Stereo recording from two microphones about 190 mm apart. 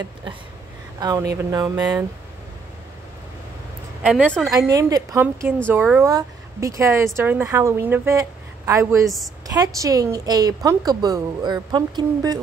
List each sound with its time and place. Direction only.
0.9 s speech: 20° right (ahead or behind)
4.0 s a woman's voice: 10° right (ahead or behind)
4.5 s a woman's voice: 20° right (ahead or behind)